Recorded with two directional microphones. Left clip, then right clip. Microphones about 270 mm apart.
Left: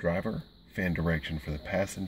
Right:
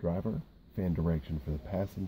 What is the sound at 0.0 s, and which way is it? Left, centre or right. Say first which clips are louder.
Speech: left 5 dB; centre.